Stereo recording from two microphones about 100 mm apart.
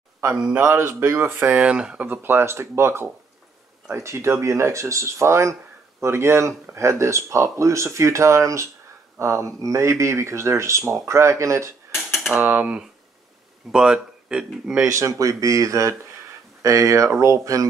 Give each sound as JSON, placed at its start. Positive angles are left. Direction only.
{"t": 0.4, "sound": "speech", "side_deg": -15}
{"t": 0.7, "sound": "speech", "side_deg": -25}
{"t": 11.9, "sound": "mechanisms", "side_deg": -5}
{"t": 12.4, "sound": "speech", "side_deg": -20}
{"t": 14.9, "sound": "speech", "side_deg": -30}